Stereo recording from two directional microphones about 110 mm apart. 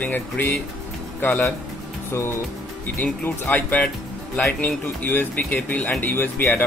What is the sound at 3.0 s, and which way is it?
Speech, 15° left (ahead or behind).